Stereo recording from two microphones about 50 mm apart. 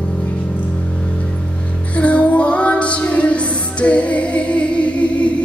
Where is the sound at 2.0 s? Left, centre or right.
Left.